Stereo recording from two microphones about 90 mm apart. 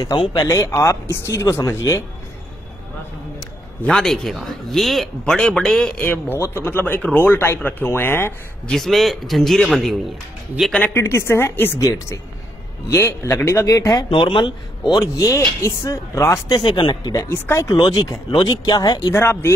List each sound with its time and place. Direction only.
0.5 s speech: 35° left (ahead or behind)
3.8 s speech: 5° left (ahead or behind)
5.9 s speech: 25° left (ahead or behind)
8.6 s speech: 5° left (ahead or behind)
10.9 s speech: 30° left (ahead or behind)
12.9 s speech: 25° left (ahead or behind)
13.7 s speech: 40° left (ahead or behind)
14.1 s a man's voice: 70° left (ahead or behind)
15.0 s speech: 35° left (ahead or behind)
16.6 s speech: 65° left (ahead or behind)
17.3 s speech: 30° left (ahead or behind)
17.7 s speech: 50° left (ahead or behind)
19.1 s speech: 30° left (ahead or behind)